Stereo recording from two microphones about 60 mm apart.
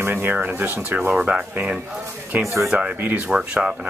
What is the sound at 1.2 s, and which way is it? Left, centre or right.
Speech, right.